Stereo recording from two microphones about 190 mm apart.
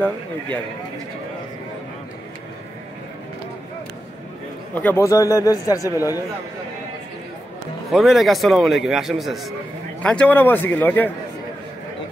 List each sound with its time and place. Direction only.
4.7 s a man's voice: 10° left (ahead or behind)
7.9 s a man's voice: centre (ahead or behind)